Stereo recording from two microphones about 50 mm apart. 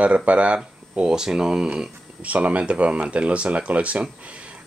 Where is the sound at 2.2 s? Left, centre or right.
Right.